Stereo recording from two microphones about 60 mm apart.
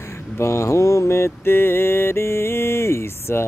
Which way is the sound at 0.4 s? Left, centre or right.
Left.